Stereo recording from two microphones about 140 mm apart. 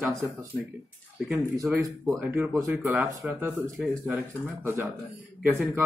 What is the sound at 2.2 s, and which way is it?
Speech, 15° right (ahead or behind).